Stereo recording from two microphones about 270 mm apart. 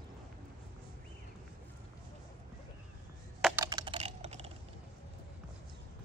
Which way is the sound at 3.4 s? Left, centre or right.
Centre.